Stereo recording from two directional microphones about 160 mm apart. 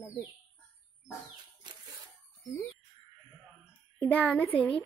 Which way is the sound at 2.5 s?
15° left (ahead or behind).